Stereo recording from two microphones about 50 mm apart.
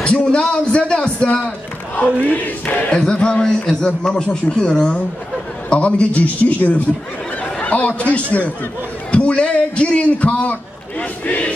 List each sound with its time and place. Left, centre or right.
0.0 s a man's voice: left
2.9 s a man's voice: centre